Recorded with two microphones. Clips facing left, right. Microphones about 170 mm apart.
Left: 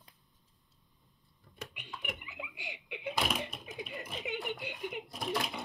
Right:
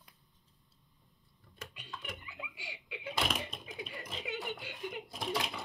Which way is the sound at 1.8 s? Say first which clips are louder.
Left 2 dB; 20° left (ahead or behind).